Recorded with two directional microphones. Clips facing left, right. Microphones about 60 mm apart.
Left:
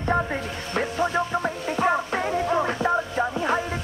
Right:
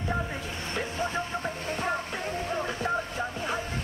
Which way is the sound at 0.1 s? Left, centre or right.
Left.